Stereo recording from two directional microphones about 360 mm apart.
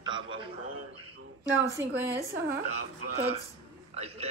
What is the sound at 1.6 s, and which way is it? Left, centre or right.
Speech, centre.